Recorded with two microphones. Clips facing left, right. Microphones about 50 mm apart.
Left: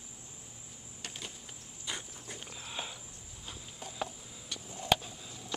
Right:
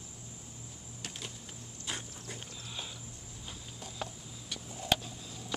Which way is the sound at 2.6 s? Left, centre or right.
Centre.